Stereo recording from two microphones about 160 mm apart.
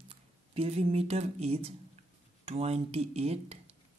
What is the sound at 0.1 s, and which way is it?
Speech, 40° right (ahead or behind).